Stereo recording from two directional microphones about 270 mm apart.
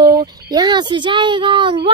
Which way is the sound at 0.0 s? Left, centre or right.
Centre.